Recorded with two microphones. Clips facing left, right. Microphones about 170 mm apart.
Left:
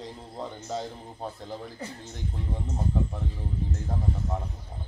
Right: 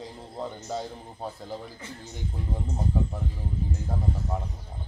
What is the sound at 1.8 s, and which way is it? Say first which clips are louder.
Speech: left 3 dB; 35° left (ahead or behind).